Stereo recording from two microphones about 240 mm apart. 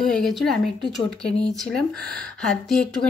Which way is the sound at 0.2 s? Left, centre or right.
Centre.